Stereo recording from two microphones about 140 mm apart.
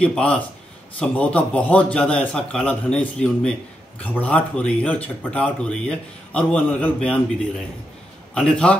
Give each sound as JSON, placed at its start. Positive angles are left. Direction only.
{"t": 0.0, "sound": "speech", "side_deg": 5}
{"t": 8.4, "sound": "speech", "side_deg": 5}